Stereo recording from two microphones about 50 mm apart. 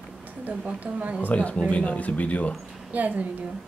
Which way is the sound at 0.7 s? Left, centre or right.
Right.